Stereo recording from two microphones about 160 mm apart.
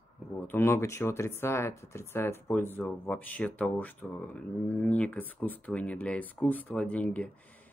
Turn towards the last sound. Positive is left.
turn(degrees=10)  # may be behind; listen again after turning